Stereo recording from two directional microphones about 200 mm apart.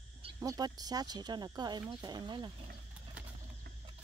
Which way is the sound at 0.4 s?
20° right (ahead or behind).